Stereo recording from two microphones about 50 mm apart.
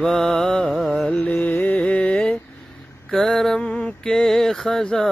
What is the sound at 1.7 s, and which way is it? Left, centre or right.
Mantra, left.